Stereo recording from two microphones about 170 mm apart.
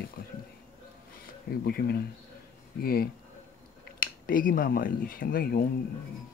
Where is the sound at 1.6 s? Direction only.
65° left (ahead or behind).